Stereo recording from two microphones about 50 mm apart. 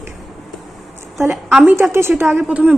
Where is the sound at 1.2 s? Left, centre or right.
Right.